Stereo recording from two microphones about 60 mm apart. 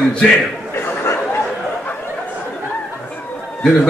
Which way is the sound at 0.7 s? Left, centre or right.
Left.